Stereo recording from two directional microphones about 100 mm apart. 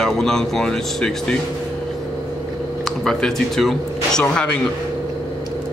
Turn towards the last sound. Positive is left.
turn(degrees=5)  # may be behind; listen again after turning